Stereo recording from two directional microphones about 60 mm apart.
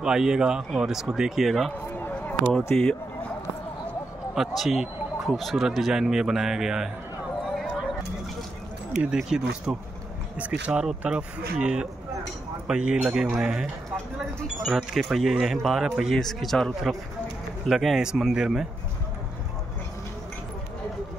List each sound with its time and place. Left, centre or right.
0.0 s speech: centre
2.0 s a sound: left
2.5 s speech: centre
4.4 s speech: centre
9.1 s speech: centre
14.7 s speech: centre
16.2 s speech: centre